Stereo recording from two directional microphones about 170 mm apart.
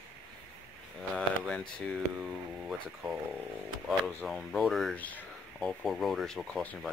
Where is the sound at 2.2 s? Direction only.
5° right (ahead or behind).